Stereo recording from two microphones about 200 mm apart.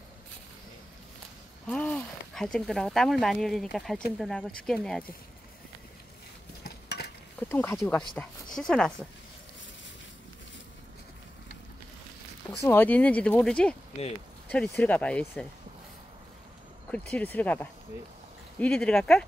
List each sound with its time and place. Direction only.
1.7 s speech: 5° left (ahead or behind)
6.6 s stir: 55° left (ahead or behind)
7.3 s speech: 10° left (ahead or behind)
12.6 s speech: 10° left (ahead or behind)
16.9 s speech: 5° left (ahead or behind)